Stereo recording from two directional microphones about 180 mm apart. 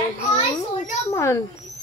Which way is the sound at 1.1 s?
15° left (ahead or behind).